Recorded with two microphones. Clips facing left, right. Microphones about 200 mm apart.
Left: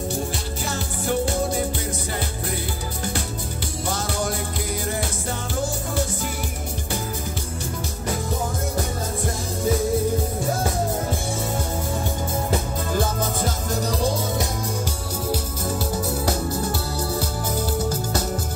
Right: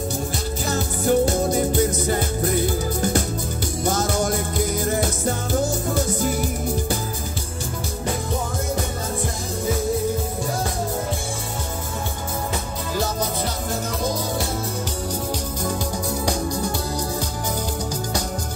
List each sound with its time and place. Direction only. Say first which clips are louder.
0.7 s music: right 6 dB; 45° right (ahead or behind)
12.9 s music: even; 50° left (ahead or behind)